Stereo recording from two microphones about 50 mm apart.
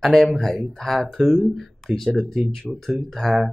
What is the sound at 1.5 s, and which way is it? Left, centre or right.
Speech, centre.